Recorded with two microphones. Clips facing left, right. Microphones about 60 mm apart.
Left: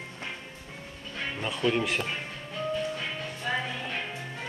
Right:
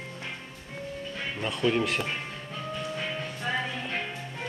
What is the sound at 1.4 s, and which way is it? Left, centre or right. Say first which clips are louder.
Speech: right 1 dB; centre.